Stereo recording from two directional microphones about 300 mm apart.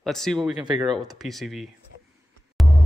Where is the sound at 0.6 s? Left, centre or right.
Centre.